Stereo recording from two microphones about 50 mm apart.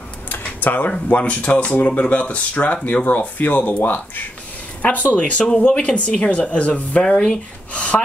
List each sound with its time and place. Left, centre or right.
0.6 s speech: left
7.0 s speech: centre
7.7 s a sound: left